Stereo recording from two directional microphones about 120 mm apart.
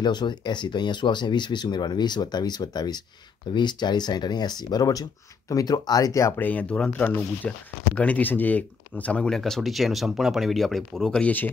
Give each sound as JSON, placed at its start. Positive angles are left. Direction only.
{"t": 0.0, "sound": "speech", "side_deg": 35}
{"t": 6.4, "sound": "speech", "side_deg": 10}